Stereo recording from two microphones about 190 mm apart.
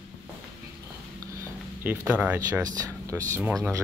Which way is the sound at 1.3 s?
15° right (ahead or behind).